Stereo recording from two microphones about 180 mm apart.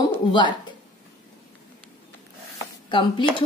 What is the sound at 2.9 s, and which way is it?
Speech, 25° left (ahead or behind).